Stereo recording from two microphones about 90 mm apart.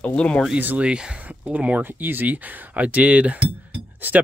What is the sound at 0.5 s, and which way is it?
Speech, 15° right (ahead or behind).